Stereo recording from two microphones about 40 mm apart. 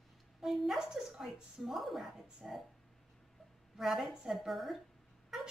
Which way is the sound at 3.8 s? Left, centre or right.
Centre.